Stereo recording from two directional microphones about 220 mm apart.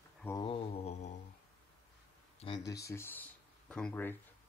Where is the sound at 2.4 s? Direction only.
20° left (ahead or behind).